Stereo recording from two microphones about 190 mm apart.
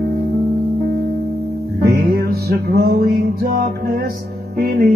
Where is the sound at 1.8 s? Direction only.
55° right (ahead or behind).